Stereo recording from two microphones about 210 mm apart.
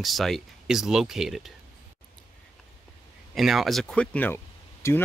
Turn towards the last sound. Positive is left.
turn(degrees=10)  # may be behind; listen again after turning